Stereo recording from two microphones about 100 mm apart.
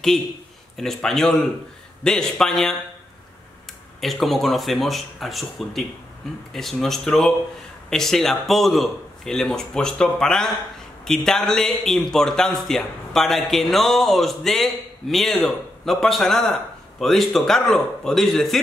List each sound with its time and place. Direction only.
0.7 s a man's voice: 5° left (ahead or behind)
4.0 s a man's voice: centre (ahead or behind)